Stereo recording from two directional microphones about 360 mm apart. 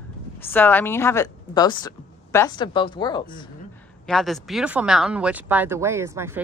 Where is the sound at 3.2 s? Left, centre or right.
Left.